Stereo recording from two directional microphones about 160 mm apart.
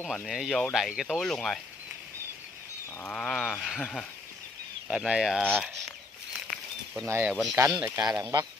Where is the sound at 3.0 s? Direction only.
5° left (ahead or behind).